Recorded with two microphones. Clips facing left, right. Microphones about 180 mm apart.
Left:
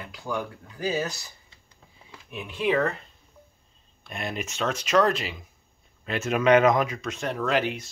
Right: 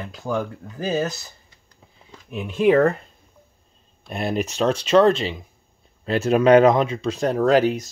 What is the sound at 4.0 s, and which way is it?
Speech, 35° right (ahead or behind).